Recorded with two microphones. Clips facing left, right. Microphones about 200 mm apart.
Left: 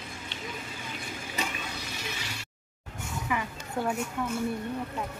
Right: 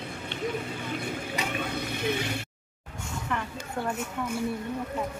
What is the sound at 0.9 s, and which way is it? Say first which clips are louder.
Mechanisms: right 8 dB; 60° right (ahead or behind).